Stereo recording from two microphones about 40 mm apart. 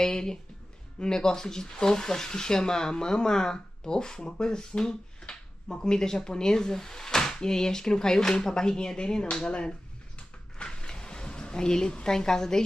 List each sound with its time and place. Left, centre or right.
0.0 s speech: centre